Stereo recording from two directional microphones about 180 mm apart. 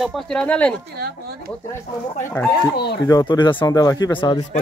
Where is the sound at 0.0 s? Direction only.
Centre (ahead or behind).